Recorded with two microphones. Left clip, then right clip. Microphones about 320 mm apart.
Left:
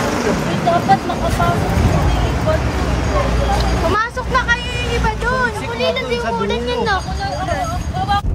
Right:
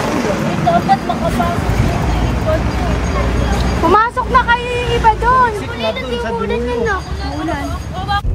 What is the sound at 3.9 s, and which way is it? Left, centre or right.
Speech, centre.